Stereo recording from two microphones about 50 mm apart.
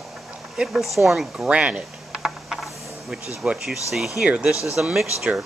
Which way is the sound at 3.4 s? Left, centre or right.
Centre.